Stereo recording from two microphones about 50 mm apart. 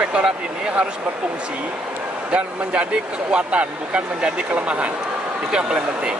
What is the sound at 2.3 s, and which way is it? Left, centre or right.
Speech, right.